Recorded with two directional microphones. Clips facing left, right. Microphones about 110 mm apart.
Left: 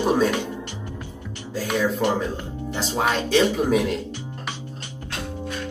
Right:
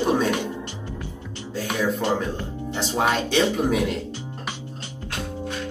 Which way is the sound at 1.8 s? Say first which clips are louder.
Left 1 dB; 20° right (ahead or behind).